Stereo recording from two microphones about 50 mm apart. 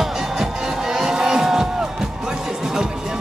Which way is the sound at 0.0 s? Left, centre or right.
Centre.